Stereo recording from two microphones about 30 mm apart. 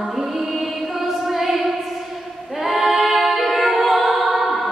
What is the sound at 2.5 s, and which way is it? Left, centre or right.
A capella, centre.